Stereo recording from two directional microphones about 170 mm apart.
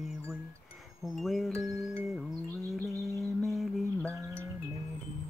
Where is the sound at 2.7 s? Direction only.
Centre (ahead or behind).